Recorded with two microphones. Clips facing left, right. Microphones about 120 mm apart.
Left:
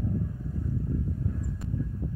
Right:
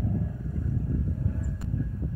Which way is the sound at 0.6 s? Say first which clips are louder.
Even; 90° right.